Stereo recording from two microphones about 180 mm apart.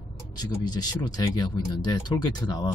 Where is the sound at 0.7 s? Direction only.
20° left (ahead or behind).